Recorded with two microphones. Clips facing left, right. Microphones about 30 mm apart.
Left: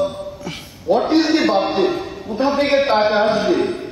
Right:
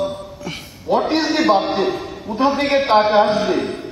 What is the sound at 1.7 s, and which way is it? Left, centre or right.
A man's voice, centre.